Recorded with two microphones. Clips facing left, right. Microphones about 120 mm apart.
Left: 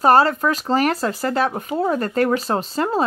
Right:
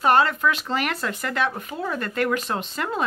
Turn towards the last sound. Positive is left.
turn(degrees=35)  # may be behind; listen again after turning